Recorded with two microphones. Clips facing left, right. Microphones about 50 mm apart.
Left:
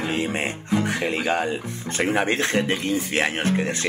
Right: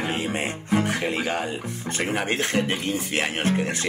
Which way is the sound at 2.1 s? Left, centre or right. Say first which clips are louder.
Left 3 dB; left.